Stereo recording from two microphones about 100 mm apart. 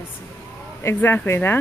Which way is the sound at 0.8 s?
20° left (ahead or behind).